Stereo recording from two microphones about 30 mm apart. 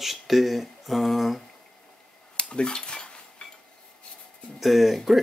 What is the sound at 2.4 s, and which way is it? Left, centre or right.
Dishes, left.